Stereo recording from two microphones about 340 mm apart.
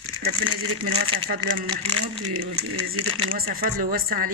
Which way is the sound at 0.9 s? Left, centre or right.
Centre.